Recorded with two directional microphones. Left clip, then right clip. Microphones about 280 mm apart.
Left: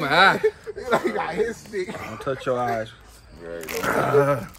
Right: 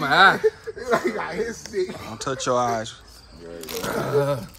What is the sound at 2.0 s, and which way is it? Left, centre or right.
Speech, centre.